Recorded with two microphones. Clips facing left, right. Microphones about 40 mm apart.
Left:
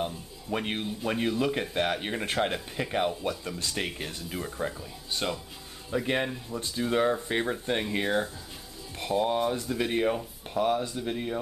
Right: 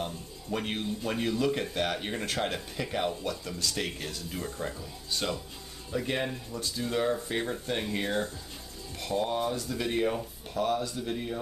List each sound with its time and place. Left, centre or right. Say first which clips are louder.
0.0 s speech: left 3 dB; centre
5.9 s speech: left 3 dB; centre